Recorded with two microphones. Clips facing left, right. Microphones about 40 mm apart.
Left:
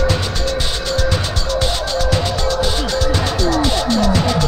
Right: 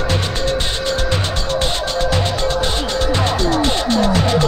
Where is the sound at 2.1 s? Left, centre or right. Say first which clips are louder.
Even; right.